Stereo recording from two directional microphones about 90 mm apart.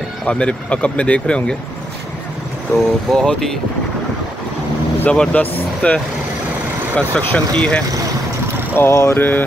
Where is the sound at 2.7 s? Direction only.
5° left (ahead or behind).